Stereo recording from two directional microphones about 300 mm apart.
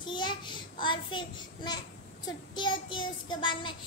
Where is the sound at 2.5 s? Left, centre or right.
Centre.